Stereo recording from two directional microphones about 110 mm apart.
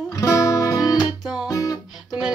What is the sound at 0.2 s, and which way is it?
Music, 35° left (ahead or behind).